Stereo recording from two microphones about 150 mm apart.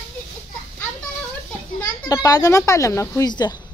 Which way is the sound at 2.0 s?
25° left (ahead or behind).